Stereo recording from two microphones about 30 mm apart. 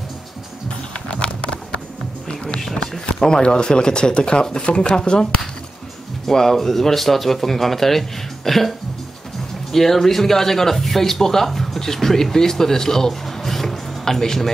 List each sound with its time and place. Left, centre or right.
0.7 s a sound: left
2.2 s music: left
3.2 s speech: left
6.2 s speech: centre